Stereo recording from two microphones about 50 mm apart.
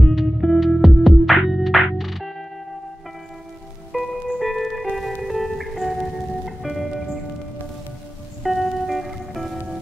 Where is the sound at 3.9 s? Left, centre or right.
Centre.